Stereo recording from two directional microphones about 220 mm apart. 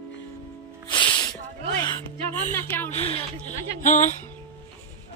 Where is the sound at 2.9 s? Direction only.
30° left (ahead or behind).